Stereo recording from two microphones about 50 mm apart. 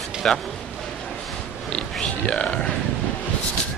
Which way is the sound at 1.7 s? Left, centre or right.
Centre.